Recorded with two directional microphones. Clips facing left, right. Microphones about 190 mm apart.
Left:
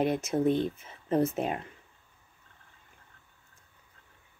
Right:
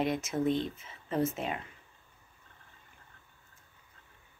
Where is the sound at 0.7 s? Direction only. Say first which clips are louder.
Left 7 dB; 50° left (ahead or behind).